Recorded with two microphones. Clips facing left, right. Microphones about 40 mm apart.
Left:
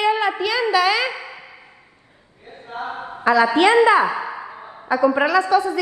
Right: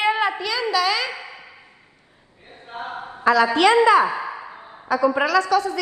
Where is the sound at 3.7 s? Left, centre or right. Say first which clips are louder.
Even; left.